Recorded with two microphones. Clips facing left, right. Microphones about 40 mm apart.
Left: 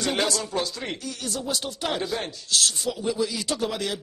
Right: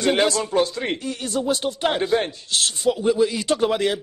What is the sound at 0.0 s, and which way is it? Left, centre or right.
Speech, right.